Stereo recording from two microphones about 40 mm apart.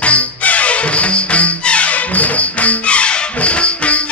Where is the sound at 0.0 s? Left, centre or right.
Left.